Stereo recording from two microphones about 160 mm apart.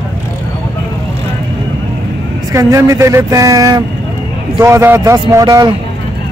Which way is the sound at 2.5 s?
20° right (ahead or behind).